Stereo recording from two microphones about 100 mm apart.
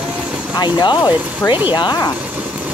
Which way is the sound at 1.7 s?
45° left (ahead or behind).